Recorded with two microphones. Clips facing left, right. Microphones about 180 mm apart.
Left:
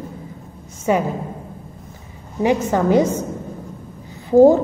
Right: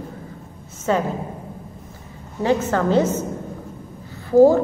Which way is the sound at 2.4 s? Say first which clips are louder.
Left 2 dB; 15° left (ahead or behind).